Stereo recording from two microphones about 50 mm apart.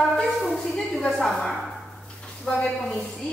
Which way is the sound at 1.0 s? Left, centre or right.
Centre.